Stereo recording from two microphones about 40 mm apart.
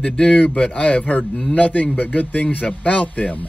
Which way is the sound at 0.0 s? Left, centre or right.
Left.